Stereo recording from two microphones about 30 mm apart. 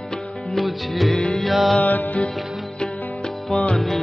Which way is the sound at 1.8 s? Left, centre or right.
Left.